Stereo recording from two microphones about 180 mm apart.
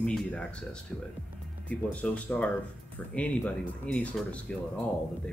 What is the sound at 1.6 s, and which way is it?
Speech, 5° left (ahead or behind).